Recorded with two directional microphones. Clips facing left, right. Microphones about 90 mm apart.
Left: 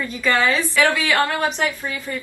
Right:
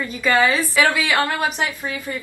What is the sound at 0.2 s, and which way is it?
A woman's voice, 5° right (ahead or behind).